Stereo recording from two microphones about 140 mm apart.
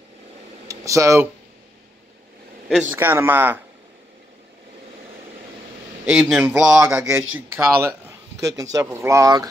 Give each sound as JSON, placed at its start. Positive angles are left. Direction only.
{"t": 0.7, "sound": "speech", "side_deg": -25}
{"t": 3.0, "sound": "speech", "side_deg": -15}
{"t": 6.0, "sound": "speech", "side_deg": -5}